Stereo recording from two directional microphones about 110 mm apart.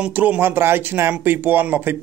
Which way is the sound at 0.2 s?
15° right (ahead or behind).